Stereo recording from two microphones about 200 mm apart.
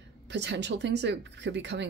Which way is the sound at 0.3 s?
60° right (ahead or behind).